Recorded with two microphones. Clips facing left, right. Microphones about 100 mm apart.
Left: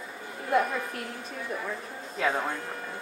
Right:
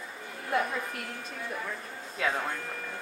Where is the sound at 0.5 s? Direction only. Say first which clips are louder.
Left 4 dB; centre (ahead or behind).